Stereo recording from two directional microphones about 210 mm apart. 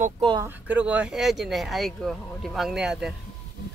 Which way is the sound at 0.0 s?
25° right (ahead or behind).